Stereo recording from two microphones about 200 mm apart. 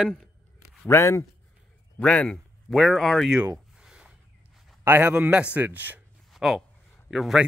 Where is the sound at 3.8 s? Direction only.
5° right (ahead or behind).